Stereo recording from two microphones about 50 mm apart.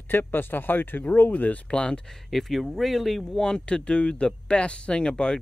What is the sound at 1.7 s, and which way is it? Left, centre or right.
Speech, centre.